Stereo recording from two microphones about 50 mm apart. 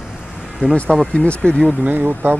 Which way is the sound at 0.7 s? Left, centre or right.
Centre.